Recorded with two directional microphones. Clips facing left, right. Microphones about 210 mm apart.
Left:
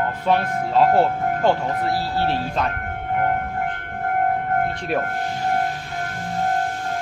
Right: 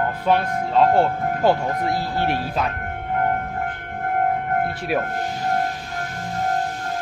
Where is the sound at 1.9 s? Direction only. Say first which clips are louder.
Left 1 dB; 15° right (ahead or behind).